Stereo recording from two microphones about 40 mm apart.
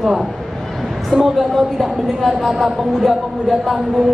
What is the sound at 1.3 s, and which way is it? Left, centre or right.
A woman's voice, centre.